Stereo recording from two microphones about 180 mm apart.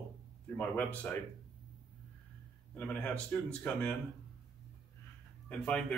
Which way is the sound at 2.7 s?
10° left (ahead or behind).